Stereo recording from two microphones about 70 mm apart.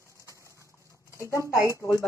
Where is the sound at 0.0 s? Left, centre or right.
Left.